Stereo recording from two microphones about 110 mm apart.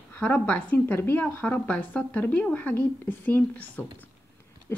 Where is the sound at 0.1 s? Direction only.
15° left (ahead or behind).